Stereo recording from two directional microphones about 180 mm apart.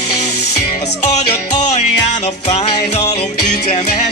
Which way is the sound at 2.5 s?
35° left (ahead or behind).